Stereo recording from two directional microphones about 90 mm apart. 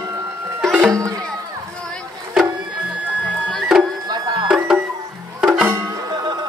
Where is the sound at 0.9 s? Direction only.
40° right (ahead or behind).